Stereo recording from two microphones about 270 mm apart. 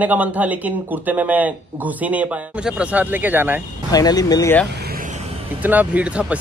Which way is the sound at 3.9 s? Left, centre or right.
Centre.